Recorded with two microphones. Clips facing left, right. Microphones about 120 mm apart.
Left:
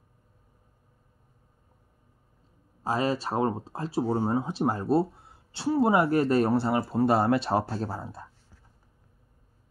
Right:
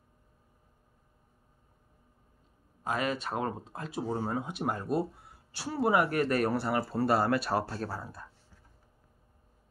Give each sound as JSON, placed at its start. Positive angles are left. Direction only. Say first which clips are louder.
{"t": 2.8, "sound": "speech", "louder": "left 5 dB", "side_deg": 30}